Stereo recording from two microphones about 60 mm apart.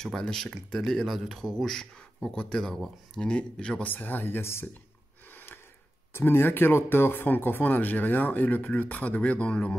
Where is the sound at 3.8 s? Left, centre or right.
Left.